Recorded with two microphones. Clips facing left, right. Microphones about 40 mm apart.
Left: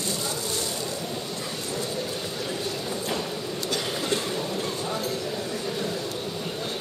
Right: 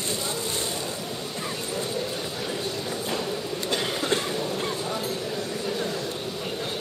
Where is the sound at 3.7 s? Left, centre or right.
Right.